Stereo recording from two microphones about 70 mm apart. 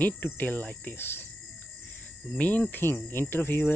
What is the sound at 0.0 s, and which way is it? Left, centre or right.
Cricket, left.